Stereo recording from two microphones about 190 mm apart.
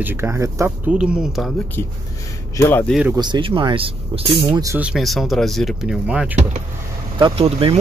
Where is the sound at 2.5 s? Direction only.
15° left (ahead or behind).